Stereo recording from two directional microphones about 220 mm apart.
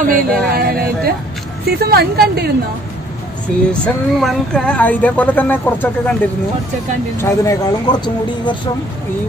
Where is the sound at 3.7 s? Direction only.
5° left (ahead or behind).